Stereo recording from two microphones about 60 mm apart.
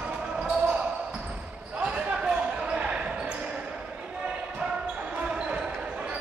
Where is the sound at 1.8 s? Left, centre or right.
Centre.